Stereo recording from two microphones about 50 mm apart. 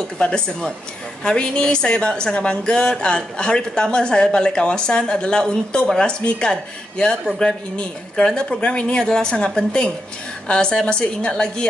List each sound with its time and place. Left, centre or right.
0.2 s a woman's voice: centre